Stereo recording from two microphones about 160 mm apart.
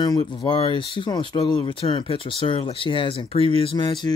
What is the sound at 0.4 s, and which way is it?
Speech, 30° left (ahead or behind).